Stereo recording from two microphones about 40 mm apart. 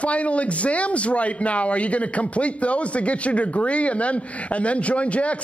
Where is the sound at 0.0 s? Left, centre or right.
Left.